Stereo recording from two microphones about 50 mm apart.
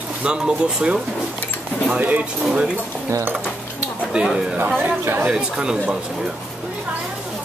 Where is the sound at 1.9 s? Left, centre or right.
Right.